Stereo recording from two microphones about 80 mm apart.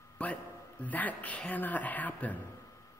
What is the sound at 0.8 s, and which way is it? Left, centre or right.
Mantra, centre.